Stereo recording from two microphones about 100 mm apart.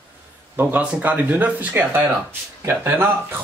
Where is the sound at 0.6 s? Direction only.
15° right (ahead or behind).